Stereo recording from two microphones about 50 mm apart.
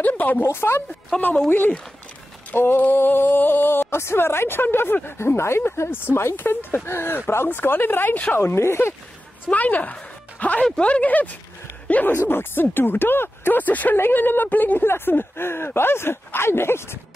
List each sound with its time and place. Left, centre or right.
0.0 s a woman's voice: left
0.4 s speech: left
1.1 s speech: centre
2.5 s speech: left
6.4 s speech: left
7.4 s speech: left
8.4 s speech: left
9.5 s a woman's voice: left
12.3 s speech: left
13.6 s a woman's voice: left
13.9 s a woman's voice: left